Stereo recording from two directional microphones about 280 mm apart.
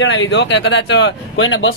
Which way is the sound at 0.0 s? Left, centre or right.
Left.